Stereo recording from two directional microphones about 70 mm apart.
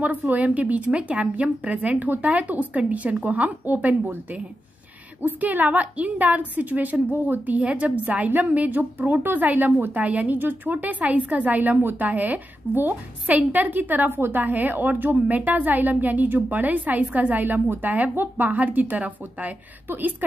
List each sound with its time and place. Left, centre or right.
0.0 s a woman's voice: right